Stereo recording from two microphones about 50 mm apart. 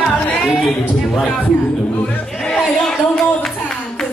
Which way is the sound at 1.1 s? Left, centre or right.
Centre.